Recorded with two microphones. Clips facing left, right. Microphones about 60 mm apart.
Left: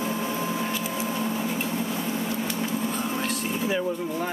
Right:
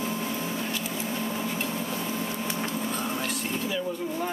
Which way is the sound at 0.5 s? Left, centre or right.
Centre.